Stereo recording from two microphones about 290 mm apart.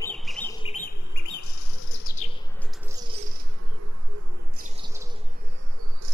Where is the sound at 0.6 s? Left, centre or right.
Left.